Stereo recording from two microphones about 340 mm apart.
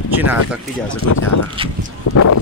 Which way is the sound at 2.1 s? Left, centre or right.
Left.